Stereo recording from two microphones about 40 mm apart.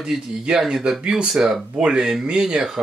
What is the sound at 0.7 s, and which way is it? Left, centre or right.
Speech, centre.